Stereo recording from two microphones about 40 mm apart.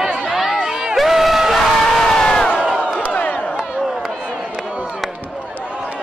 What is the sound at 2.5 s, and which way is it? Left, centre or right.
Crowd, centre.